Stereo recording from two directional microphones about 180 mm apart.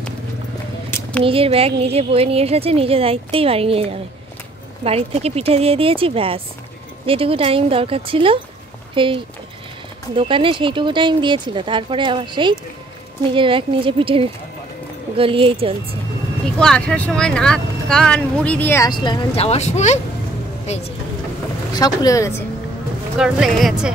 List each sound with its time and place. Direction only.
0.8 s a sound: 10° left (ahead or behind)
1.2 s a woman's voice: 30° right (ahead or behind)
16.5 s speech: 5° left (ahead or behind)
18.9 s speech: 25° left (ahead or behind)
21.7 s speech: 20° left (ahead or behind)
23.1 s speech: 5° right (ahead or behind)